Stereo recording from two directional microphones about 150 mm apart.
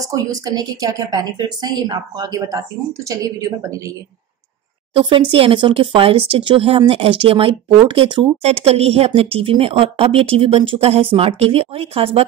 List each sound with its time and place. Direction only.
0.1 s a woman's voice: 25° right (ahead or behind)
4.9 s speech: 35° right (ahead or behind)